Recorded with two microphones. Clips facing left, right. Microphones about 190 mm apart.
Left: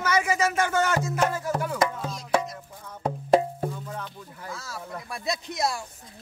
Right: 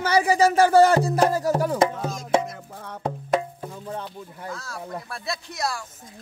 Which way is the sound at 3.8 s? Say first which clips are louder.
Right 4 dB; 30° right (ahead or behind).